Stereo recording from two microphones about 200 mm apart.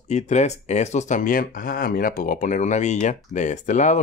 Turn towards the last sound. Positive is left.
turn(degrees=35)  # may be behind; listen again after turning